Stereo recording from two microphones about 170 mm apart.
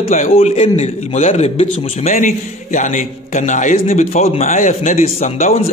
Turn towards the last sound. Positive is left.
turn(degrees=40)  # may be behind; listen again after turning